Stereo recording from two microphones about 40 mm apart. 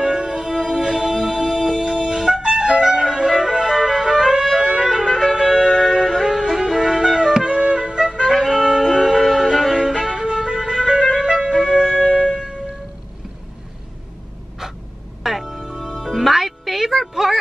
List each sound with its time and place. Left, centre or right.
0.0 s music: right
1.1 s music: centre
1.8 s music: centre
5.0 s clarinet: centre
5.6 s music: left
6.2 s music: centre
7.0 s music: centre
8.3 s music: centre
8.5 s music: centre
11.5 s music: centre
11.9 s music: left
15.2 s music: centre